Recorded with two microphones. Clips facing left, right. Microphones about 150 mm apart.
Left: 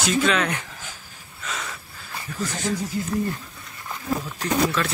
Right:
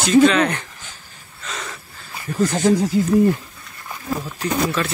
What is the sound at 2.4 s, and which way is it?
Speech, 90° right.